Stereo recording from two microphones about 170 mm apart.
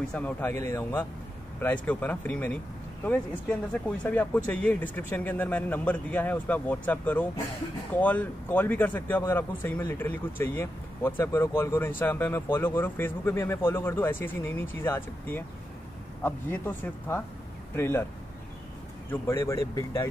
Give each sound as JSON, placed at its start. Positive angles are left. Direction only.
{"t": 0.0, "sound": "speech", "side_deg": 5}
{"t": 4.0, "sound": "speech", "side_deg": 10}
{"t": 19.0, "sound": "speech", "side_deg": 15}